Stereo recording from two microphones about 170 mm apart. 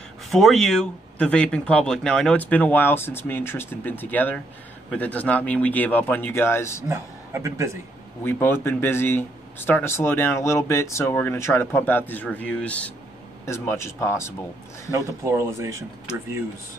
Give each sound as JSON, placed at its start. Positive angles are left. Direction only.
{"t": 0.3, "sound": "speech", "side_deg": 0}
{"t": 6.9, "sound": "a man's voice", "side_deg": -15}
{"t": 8.2, "sound": "speech", "side_deg": 15}
{"t": 14.9, "sound": "speech", "side_deg": -15}